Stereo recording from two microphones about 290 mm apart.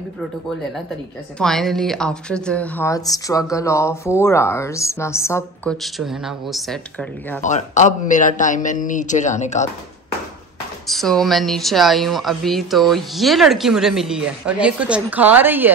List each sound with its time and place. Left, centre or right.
1.4 s a woman's voice: centre
7.4 s a man's voice: left
10.9 s speech: centre